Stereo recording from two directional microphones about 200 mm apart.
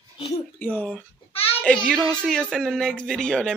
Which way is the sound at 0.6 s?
5° left (ahead or behind).